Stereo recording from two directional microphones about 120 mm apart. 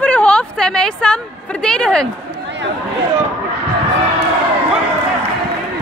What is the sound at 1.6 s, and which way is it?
Speech, 5° left (ahead or behind).